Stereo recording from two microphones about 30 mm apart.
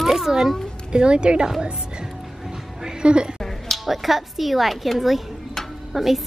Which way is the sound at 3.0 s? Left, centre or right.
Right.